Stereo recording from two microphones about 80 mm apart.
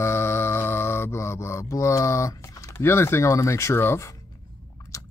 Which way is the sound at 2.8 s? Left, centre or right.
Left.